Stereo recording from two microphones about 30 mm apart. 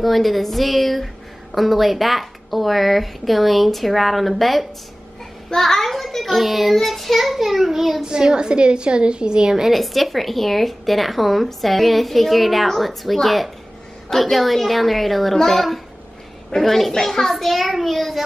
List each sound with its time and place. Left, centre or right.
0.0 s a child's voice: centre
8.0 s a woman's voice: right
9.7 s a child's voice: centre